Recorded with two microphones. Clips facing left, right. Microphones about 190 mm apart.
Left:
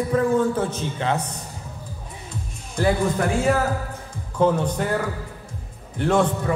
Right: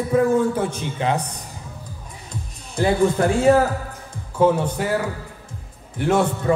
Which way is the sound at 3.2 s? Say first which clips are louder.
Right 4 dB; 30° right (ahead or behind).